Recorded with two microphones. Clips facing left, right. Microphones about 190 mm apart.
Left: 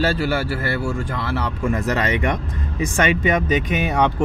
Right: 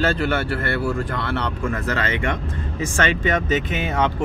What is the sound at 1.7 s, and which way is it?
Speech, 15° left (ahead or behind).